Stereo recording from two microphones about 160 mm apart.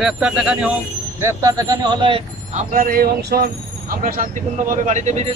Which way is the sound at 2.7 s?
65° right (ahead or behind).